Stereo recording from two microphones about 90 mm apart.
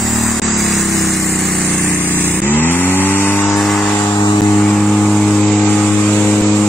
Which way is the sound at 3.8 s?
10° left (ahead or behind).